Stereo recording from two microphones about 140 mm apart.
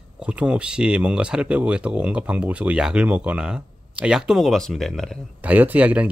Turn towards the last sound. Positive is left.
turn(degrees=-10)  # may be behind; listen again after turning